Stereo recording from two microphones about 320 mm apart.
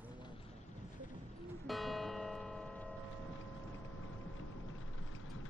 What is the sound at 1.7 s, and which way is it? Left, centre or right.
Music, centre.